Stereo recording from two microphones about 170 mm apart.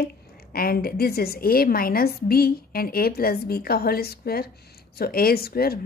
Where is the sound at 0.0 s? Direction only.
60° left (ahead or behind).